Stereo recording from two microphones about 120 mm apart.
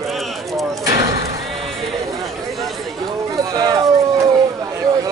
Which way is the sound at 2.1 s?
Centre (ahead or behind).